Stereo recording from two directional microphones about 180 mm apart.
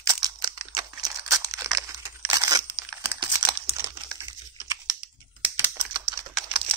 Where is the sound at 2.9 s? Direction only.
10° right (ahead or behind).